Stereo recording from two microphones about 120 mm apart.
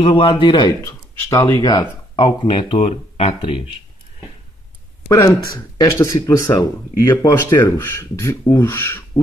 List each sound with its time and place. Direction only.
0.0 s speech: 45° left (ahead or behind)
0.8 s speech: 20° left (ahead or behind)
1.6 s speech: 40° left (ahead or behind); by 3.6 s 55° left (ahead or behind)
5.0 s speech: 25° left (ahead or behind)
7.3 s speech: 20° left (ahead or behind)